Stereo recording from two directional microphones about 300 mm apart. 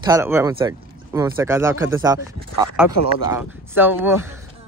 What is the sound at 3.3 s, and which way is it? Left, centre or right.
Speech, centre.